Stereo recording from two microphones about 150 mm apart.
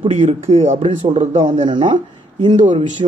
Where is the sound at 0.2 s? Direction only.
40° right (ahead or behind).